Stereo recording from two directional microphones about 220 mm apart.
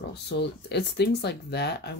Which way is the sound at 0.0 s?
50° left (ahead or behind).